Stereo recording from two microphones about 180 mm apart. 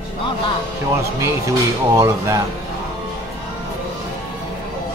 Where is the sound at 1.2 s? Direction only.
15° right (ahead or behind).